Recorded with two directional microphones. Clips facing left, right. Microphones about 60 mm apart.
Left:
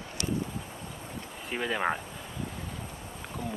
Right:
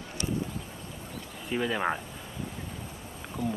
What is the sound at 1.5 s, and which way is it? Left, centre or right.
Speech, centre.